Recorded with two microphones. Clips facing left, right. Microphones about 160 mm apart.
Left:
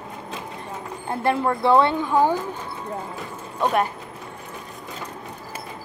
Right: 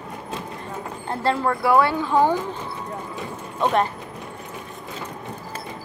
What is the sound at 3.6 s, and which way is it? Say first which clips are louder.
Speech: right 1 dB; 10° left (ahead or behind).